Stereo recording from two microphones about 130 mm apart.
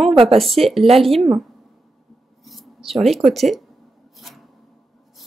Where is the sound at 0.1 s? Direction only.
45° right (ahead or behind).